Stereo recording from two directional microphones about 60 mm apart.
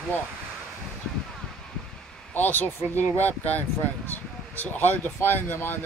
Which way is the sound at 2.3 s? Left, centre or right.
Left.